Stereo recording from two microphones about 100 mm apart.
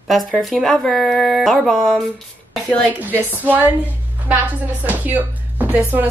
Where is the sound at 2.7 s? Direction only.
10° left (ahead or behind).